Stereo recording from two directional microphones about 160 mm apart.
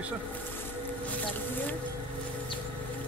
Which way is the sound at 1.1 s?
10° left (ahead or behind).